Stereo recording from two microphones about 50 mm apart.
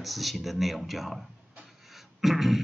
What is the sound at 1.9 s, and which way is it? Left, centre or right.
Beatboxing, centre.